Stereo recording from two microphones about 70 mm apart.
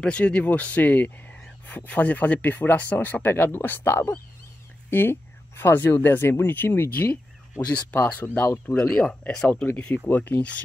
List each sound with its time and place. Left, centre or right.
0.0 s speech: centre; by 4.2 s left
5.6 s speech: left
8.0 s speech: left
8.7 s speech: centre
10.0 s speech: left